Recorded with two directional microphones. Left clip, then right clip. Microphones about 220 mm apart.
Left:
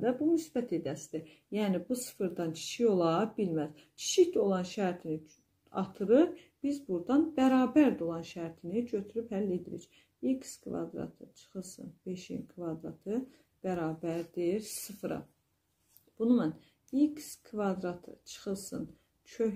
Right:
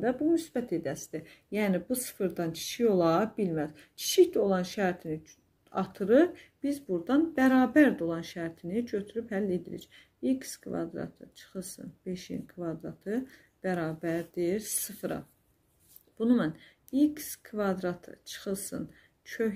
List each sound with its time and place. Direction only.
0.0 s speech: 35° right (ahead or behind)